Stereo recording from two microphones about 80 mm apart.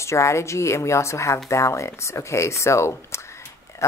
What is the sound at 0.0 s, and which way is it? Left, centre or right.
Speech, left.